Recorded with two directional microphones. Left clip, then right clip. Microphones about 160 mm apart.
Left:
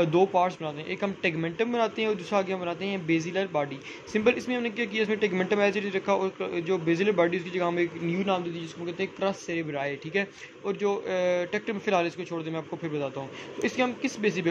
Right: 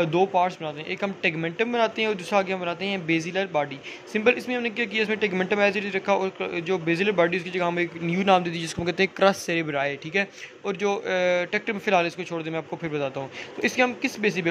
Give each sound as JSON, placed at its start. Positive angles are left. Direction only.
{"t": 0.0, "sound": "speech", "side_deg": 0}
{"t": 8.1, "sound": "speech", "side_deg": -25}
{"t": 8.5, "sound": "speech", "side_deg": -45}